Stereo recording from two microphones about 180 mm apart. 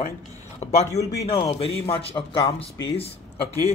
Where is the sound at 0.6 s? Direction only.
40° left (ahead or behind).